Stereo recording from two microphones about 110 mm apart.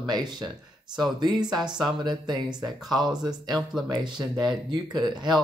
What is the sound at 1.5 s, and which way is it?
Speech, 40° right (ahead or behind).